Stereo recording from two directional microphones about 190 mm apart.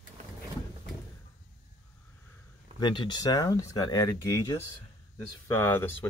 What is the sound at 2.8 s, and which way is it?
Speech, 25° left (ahead or behind).